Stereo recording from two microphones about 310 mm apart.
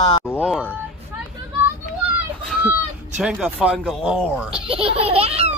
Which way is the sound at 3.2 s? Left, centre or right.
Centre.